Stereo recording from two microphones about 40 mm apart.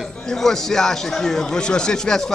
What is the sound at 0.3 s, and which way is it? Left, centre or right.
Speech, centre.